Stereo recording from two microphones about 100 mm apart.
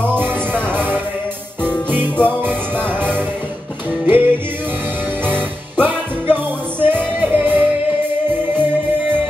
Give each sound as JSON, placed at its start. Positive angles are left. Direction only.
{"t": 0.0, "sound": "music", "side_deg": -20}